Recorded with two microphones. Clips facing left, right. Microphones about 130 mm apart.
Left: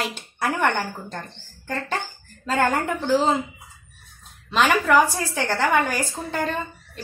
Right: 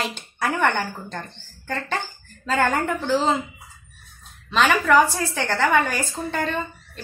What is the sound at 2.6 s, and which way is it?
Speech, 10° left (ahead or behind).